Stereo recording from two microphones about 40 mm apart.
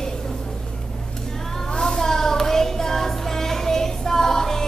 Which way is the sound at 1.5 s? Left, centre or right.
Centre.